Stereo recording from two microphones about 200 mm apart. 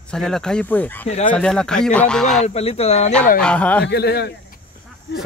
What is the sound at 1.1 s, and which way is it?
Speech, 35° left (ahead or behind).